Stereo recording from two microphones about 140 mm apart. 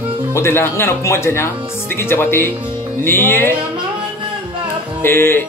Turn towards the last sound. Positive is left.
turn(degrees=15)  # may be behind; listen again after turning